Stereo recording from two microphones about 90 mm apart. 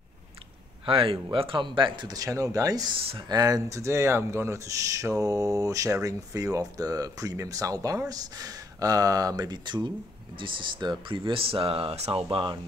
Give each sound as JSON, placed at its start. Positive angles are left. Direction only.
{"t": 0.8, "sound": "speech", "side_deg": -85}
{"t": 3.0, "sound": "speech", "side_deg": -90}
{"t": 3.3, "sound": "speech", "side_deg": -45}
{"t": 10.3, "sound": "speech", "side_deg": -65}